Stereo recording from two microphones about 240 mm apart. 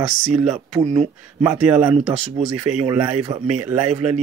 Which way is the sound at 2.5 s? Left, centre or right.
Right.